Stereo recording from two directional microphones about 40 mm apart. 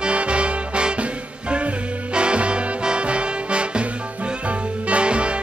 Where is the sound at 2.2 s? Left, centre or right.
Right.